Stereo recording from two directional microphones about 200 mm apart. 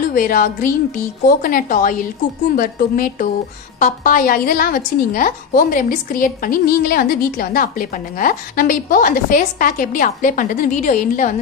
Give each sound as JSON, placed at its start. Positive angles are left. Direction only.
{"t": 0.1, "sound": "a woman's voice", "side_deg": 45}